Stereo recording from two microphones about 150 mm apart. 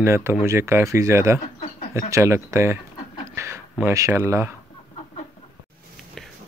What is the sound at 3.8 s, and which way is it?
Speech, 20° right (ahead or behind).